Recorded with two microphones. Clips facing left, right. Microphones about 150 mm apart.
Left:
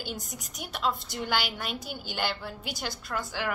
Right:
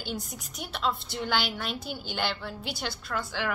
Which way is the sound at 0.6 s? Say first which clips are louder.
Even; 10° left (ahead or behind).